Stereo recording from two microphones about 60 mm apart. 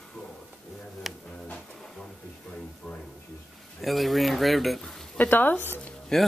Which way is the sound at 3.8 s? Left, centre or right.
Centre.